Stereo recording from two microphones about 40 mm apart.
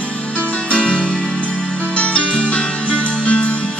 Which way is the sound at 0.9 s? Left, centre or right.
Centre.